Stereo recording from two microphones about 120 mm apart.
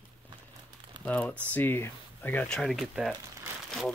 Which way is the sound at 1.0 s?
10° left (ahead or behind).